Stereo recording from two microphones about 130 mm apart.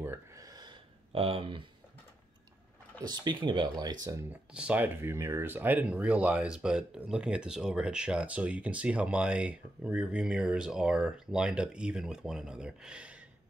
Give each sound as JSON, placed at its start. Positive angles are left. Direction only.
{"t": 0.0, "sound": "a sound", "side_deg": -20}
{"t": 1.1, "sound": "speech", "side_deg": -45}
{"t": 3.3, "sound": "speech", "side_deg": -35}
{"t": 4.3, "sound": "speech", "side_deg": -10}